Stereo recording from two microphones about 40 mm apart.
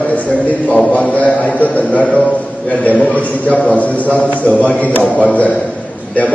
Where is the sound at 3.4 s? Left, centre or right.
Left.